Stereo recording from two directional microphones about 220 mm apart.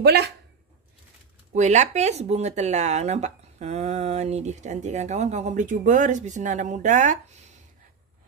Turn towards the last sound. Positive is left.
turn(degrees=-35)  # may be behind; listen again after turning